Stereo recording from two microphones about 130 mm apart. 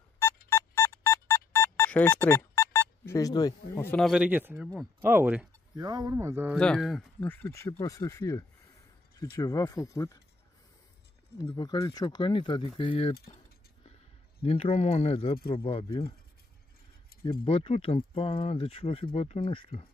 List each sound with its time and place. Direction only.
0.2 s music: 15° left (ahead or behind)
4.0 s speech: 10° right (ahead or behind)
5.8 s speech: 30° right (ahead or behind)
6.5 s speech: 5° left (ahead or behind)
7.2 s speech: 15° left (ahead or behind)
11.4 s speech: 30° left (ahead or behind)
14.4 s speech: 50° left (ahead or behind)
17.2 s speech: 45° left (ahead or behind)